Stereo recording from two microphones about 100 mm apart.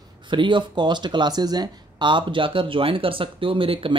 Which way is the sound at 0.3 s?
50° right (ahead or behind).